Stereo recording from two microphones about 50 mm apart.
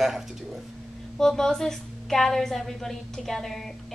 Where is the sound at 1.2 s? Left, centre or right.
Centre.